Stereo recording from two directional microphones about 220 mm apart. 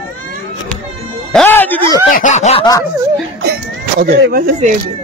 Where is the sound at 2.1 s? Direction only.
35° left (ahead or behind).